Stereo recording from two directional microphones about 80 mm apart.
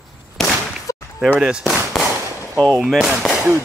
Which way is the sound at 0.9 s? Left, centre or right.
Left.